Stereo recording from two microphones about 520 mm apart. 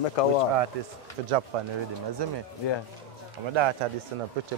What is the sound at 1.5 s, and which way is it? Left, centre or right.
Speech, right.